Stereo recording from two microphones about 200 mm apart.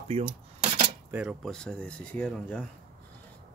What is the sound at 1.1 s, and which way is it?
Speech, 5° right (ahead or behind).